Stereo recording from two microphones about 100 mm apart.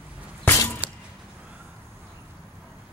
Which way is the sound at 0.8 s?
10° right (ahead or behind).